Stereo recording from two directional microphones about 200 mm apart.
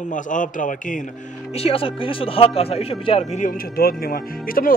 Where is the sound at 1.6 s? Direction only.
30° left (ahead or behind).